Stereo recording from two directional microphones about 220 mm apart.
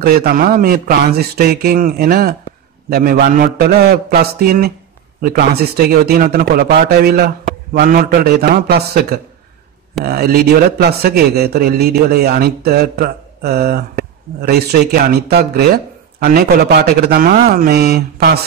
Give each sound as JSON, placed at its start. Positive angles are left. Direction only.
{"t": 0.0, "sound": "a man's voice", "side_deg": -45}